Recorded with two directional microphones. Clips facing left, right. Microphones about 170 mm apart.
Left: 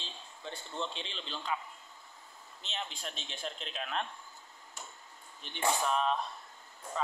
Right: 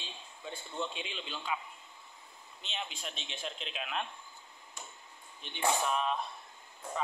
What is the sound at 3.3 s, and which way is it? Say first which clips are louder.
Speech: even; 15° right (ahead or behind).